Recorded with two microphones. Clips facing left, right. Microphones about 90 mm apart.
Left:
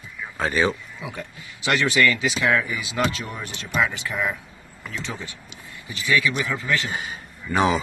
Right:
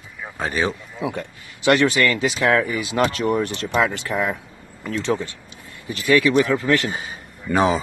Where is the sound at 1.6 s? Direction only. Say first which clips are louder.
Right 4 dB; 50° right (ahead or behind).